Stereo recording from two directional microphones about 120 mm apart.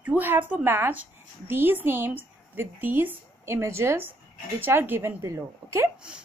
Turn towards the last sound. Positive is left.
turn(degrees=-25)  # may be behind; listen again after turning